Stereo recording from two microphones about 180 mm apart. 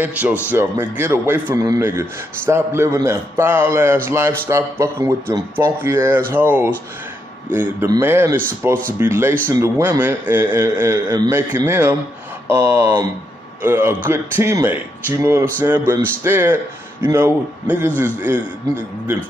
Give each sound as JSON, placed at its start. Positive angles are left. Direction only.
{"t": 0.0, "sound": "a man's voice", "side_deg": -10}